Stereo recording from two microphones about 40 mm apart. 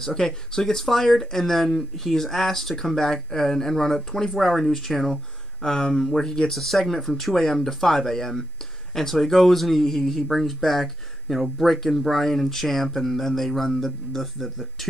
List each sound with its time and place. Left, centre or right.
0.0 s speech: centre
5.6 s speech: centre
6.5 s speech: centre